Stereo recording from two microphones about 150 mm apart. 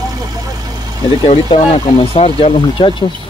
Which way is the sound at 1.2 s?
40° left (ahead or behind).